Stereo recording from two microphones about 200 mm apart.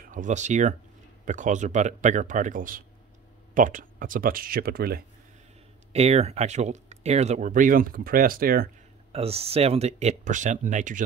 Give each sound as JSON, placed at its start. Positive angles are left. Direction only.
{"t": 0.0, "sound": "speech", "side_deg": -40}
{"t": 5.9, "sound": "speech", "side_deg": -30}
{"t": 9.1, "sound": "speech", "side_deg": -30}